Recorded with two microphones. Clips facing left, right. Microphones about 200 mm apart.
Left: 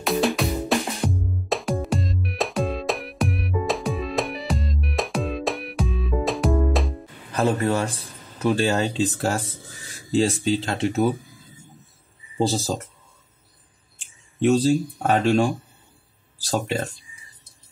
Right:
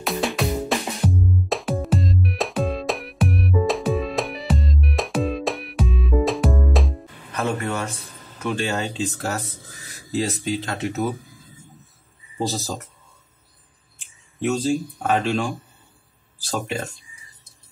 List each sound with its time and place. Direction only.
0.0 s music: centre (ahead or behind)
7.3 s a man's voice: 35° left (ahead or behind)
12.4 s speech: 30° left (ahead or behind)
14.4 s speech: 35° left (ahead or behind)